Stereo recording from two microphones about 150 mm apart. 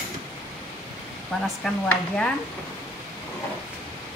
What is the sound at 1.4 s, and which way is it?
Speech, 5° left (ahead or behind).